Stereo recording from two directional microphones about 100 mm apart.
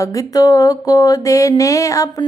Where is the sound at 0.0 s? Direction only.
35° left (ahead or behind).